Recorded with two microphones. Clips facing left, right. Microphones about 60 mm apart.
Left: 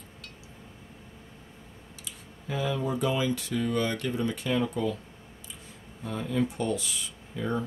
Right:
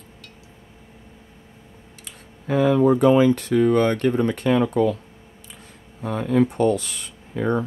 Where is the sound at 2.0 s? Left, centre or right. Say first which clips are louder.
Right 7 dB; right.